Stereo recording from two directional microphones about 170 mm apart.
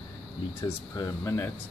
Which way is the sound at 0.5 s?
15° left (ahead or behind).